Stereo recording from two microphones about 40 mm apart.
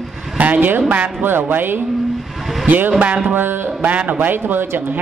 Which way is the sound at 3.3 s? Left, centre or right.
Right.